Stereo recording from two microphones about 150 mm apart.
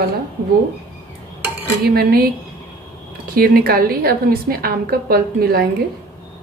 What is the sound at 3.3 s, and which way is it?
A woman's voice, 80° right.